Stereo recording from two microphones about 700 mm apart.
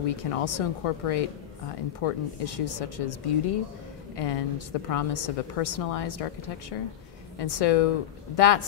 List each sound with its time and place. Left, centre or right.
0.0 s a woman's voice: left